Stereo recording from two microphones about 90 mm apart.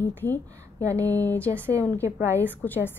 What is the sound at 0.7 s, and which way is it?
Speech, 35° right (ahead or behind).